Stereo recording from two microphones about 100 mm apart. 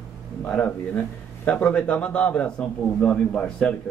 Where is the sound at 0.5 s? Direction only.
15° left (ahead or behind).